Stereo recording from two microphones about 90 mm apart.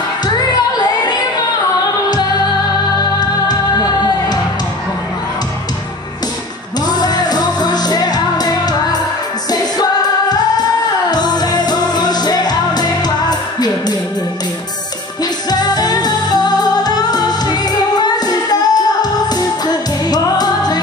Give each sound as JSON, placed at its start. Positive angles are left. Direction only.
{"t": 0.4, "sound": "music", "side_deg": 50}
{"t": 3.2, "sound": "music", "side_deg": 50}
{"t": 6.9, "sound": "music", "side_deg": 50}
{"t": 15.5, "sound": "music", "side_deg": 50}